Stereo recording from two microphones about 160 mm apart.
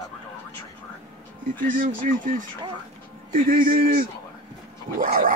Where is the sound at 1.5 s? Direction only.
55° right (ahead or behind).